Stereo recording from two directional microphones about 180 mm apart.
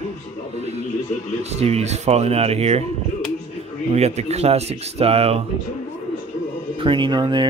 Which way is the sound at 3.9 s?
35° right (ahead or behind).